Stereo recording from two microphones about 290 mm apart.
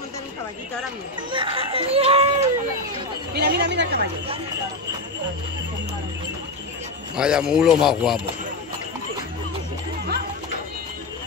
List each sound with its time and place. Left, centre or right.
1.3 s speech: centre
3.3 s speech: right
7.2 s speech: centre